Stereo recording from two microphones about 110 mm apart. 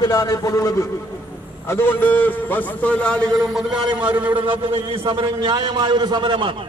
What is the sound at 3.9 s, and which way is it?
Speech, 15° right (ahead or behind).